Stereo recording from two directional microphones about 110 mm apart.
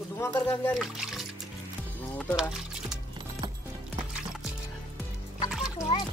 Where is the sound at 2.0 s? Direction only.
15° left (ahead or behind).